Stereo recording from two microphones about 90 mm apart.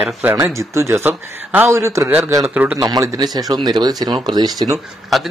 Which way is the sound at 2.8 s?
40° right (ahead or behind).